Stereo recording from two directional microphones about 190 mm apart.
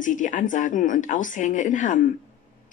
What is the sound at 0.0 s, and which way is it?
A woman's voice, 45° left (ahead or behind).